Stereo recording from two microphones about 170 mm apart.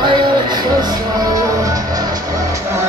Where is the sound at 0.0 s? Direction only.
25° right (ahead or behind).